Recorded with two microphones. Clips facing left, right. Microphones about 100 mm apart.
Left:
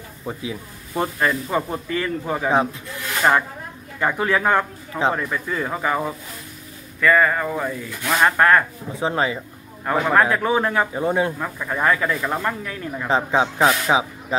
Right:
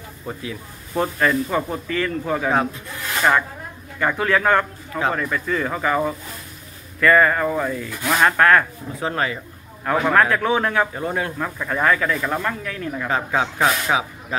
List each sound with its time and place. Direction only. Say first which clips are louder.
0.3 s speech: left 1 dB; 15° left (ahead or behind)
4.0 s speech: right 1 dB; 15° left (ahead or behind)
11.3 s speech: right 1 dB; 5° left (ahead or behind)